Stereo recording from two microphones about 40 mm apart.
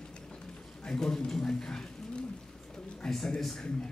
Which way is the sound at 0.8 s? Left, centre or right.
Centre.